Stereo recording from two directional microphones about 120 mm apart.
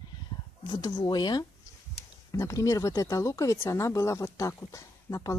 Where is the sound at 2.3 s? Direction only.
25° left (ahead or behind).